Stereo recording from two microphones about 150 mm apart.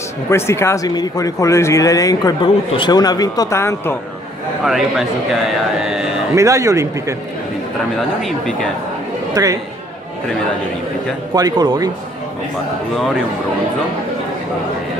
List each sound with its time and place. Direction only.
0.3 s speech: 15° left (ahead or behind)
4.6 s speech: centre (ahead or behind)
6.3 s a man's voice: 20° right (ahead or behind)
8.2 s speech: centre (ahead or behind)
9.3 s speech: 25° right (ahead or behind)
11.3 s a man's voice: 25° right (ahead or behind)